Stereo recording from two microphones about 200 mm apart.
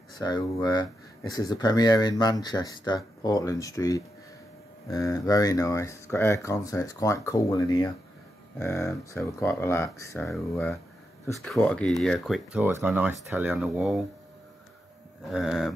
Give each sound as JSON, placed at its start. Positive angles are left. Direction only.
{"t": 0.2, "sound": "speech", "side_deg": 20}
{"t": 12.6, "sound": "speech", "side_deg": -10}
{"t": 15.2, "sound": "speech", "side_deg": 0}